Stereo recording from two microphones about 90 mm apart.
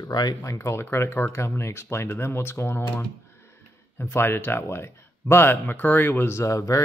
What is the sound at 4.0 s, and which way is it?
Speech, 25° left (ahead or behind).